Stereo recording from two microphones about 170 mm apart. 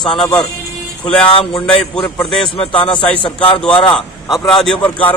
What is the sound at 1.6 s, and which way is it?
Speech, 5° left (ahead or behind).